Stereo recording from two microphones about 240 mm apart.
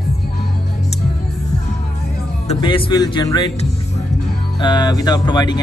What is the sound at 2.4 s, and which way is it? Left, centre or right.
Speech, left.